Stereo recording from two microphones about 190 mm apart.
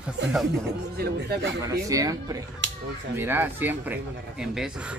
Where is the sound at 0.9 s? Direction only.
60° right (ahead or behind).